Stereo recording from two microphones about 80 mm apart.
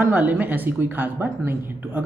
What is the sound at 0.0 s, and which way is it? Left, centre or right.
A woman's voice, right.